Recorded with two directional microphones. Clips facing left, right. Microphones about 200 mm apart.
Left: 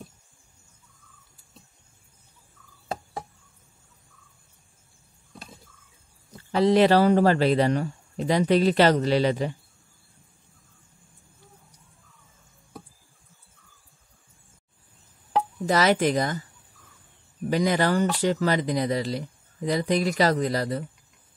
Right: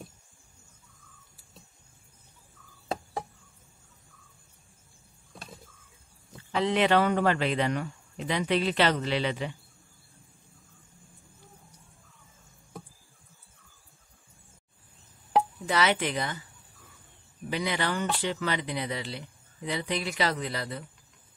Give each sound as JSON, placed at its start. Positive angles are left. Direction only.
{"t": 6.5, "sound": "speech", "side_deg": 35}
{"t": 15.6, "sound": "speech", "side_deg": 40}
{"t": 17.5, "sound": "speech", "side_deg": 40}